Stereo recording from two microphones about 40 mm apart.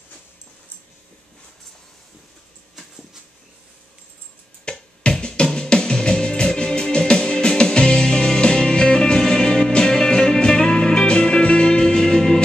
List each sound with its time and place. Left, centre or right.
4.7 s music: left